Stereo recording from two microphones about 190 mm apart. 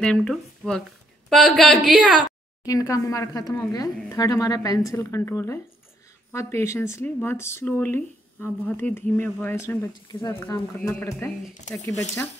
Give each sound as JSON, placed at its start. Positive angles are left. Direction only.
{"t": 0.0, "sound": "a woman's voice", "side_deg": 5}
{"t": 2.6, "sound": "speech", "side_deg": 20}
{"t": 10.2, "sound": "speech", "side_deg": 20}